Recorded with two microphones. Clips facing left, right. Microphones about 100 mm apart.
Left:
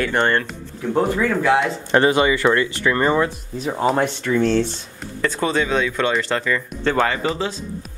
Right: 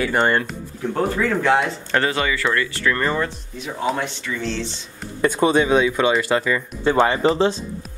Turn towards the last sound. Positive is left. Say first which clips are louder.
# right 6 dB
turn(degrees=-30)  # may be behind; listen again after turning